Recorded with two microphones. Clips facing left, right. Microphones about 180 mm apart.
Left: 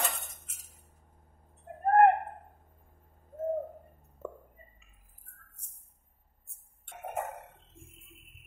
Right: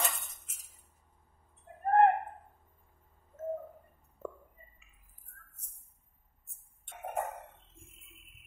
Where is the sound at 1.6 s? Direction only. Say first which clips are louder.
Left 3 dB; 50° left (ahead or behind).